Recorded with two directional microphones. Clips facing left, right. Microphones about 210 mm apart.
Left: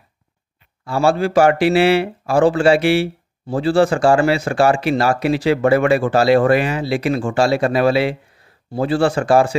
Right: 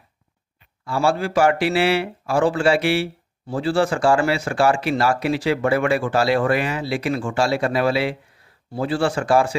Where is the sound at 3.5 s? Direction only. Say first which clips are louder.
Left 5 dB; 35° left (ahead or behind).